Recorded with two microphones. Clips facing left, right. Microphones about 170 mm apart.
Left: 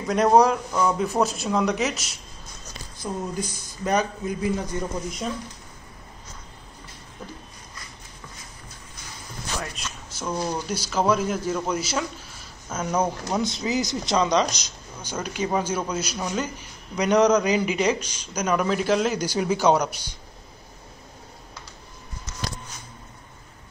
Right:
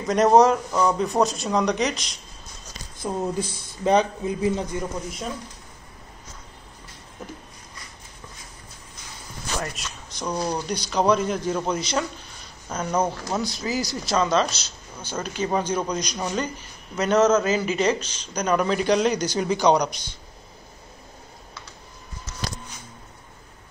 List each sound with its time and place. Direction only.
0.0 s speech: centre (ahead or behind)
3.0 s a man's voice: 30° right (ahead or behind)
9.6 s a sound: 5° left (ahead or behind)
10.2 s speech: 15° right (ahead or behind)
10.7 s speech: 5° left (ahead or behind)
13.4 s speech: 20° left (ahead or behind)